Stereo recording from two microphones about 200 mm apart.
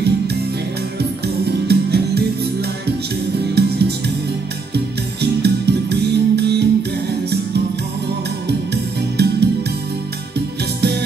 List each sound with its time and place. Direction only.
1.2 s music: 55° right (ahead or behind)
3.5 s music: 55° right (ahead or behind)
9.1 s music: 55° right (ahead or behind)
10.8 s music: 55° right (ahead or behind)